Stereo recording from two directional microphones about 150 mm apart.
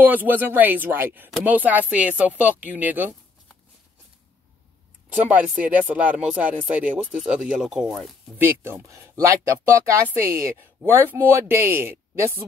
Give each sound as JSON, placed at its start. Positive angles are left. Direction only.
{"t": 0.0, "sound": "speech", "side_deg": -10}
{"t": 5.3, "sound": "speech", "side_deg": -10}
{"t": 8.5, "sound": "speech", "side_deg": -15}